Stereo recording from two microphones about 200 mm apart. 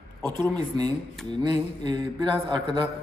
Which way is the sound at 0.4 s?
20° right (ahead or behind).